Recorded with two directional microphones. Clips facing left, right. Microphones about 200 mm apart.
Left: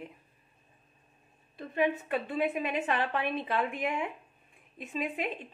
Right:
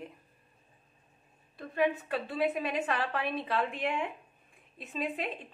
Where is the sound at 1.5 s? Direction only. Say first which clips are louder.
Even; 20° left (ahead or behind).